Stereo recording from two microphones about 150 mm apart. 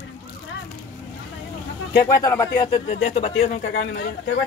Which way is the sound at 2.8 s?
45° left (ahead or behind).